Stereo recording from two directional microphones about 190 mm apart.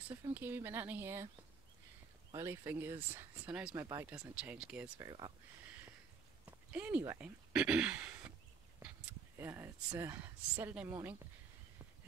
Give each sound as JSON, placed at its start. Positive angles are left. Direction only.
{"t": 0.1, "sound": "speech", "side_deg": -10}
{"t": 2.3, "sound": "speech", "side_deg": -15}
{"t": 4.1, "sound": "speech", "side_deg": -5}
{"t": 6.4, "sound": "speech", "side_deg": -10}
{"t": 9.4, "sound": "speech", "side_deg": -10}